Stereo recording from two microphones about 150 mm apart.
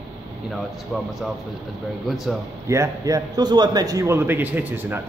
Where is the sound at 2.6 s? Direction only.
20° right (ahead or behind).